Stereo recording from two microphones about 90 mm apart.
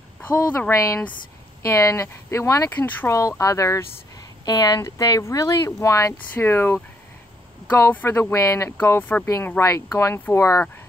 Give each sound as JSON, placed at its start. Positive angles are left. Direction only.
{"t": 0.2, "sound": "speech", "side_deg": 30}
{"t": 2.7, "sound": "speech", "side_deg": 20}
{"t": 3.1, "sound": "speech", "side_deg": 35}
{"t": 4.5, "sound": "speech", "side_deg": 50}
{"t": 6.3, "sound": "speech", "side_deg": 25}
{"t": 7.9, "sound": "speech", "side_deg": 25}
{"t": 9.6, "sound": "speech", "side_deg": 35}